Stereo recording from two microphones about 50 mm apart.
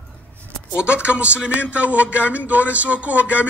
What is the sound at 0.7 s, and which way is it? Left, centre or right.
A man's voice, right.